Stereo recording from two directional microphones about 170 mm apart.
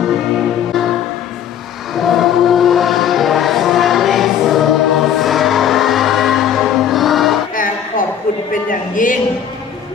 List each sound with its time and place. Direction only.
0.0 s music: centre (ahead or behind)
2.0 s music: centre (ahead or behind)
8.6 s a sound: 50° left (ahead or behind)